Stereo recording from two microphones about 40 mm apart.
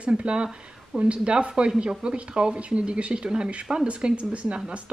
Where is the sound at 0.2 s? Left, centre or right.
Right.